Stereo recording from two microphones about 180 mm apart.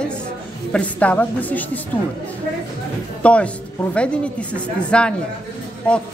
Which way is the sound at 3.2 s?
5° left (ahead or behind).